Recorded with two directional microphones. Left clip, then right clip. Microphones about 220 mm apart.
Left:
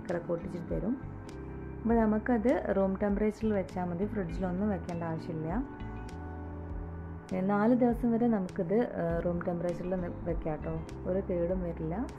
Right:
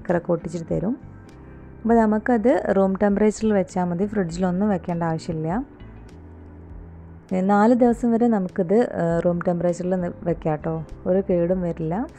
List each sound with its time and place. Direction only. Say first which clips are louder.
0.1 s a woman's voice: right 12 dB; 35° right (ahead or behind)
7.3 s a woman's voice: right 11 dB; 40° right (ahead or behind)